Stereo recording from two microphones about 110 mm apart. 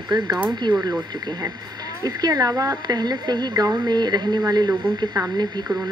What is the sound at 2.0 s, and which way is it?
Speech, 35° right (ahead or behind).